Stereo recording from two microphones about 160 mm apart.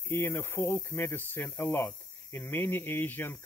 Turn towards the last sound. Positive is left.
turn(degrees=15)  # may be behind; listen again after turning